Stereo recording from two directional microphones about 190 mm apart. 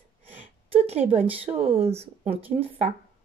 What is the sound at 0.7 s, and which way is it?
Speech, 30° right (ahead or behind).